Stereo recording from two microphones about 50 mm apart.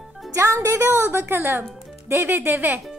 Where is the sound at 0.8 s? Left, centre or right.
Right.